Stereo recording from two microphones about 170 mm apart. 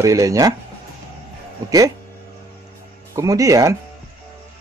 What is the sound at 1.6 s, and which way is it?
Speech, 20° right (ahead or behind).